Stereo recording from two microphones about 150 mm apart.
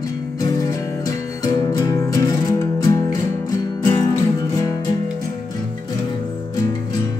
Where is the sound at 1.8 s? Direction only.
20° left (ahead or behind).